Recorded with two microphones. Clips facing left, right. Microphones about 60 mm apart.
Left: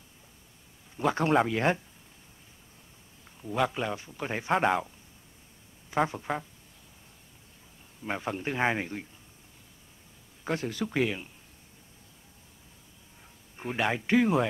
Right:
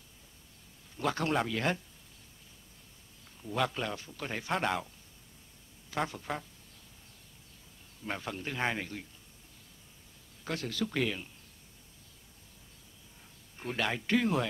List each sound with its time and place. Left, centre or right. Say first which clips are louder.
0.9 s speech: left 6 dB; left
3.4 s speech: left 4 dB; centre
6.0 s speech: left 5 dB; left
8.0 s speech: left 5 dB; centre
10.4 s speech: left 4 dB; left
13.6 s speech: left 4 dB; centre